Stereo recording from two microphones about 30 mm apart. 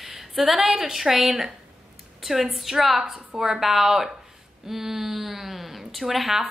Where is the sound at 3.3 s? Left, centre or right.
Right; by 6.3 s centre.